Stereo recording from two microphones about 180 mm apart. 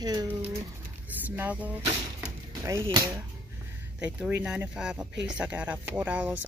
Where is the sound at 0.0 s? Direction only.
20° right (ahead or behind).